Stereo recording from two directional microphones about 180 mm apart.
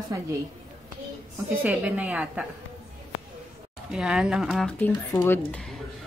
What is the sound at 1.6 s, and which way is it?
Speech, 5° right (ahead or behind).